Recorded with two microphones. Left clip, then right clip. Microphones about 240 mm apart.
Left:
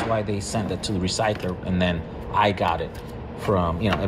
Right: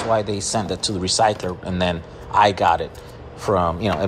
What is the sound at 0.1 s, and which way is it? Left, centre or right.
Speech, centre.